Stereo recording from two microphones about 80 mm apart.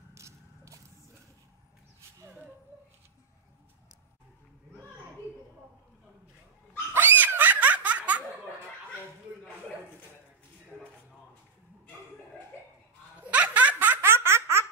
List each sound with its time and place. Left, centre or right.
0.1 s mechanisms: right
6.9 s laughter: right
13.3 s laughter: centre